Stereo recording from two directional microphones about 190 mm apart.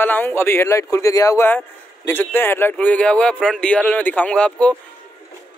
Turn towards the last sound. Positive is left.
turn(degrees=5)  # may be behind; listen again after turning